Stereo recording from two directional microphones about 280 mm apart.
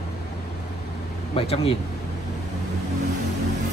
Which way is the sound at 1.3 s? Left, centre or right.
Centre.